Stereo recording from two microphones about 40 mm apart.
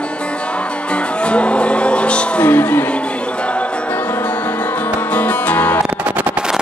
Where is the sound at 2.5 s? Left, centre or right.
Left.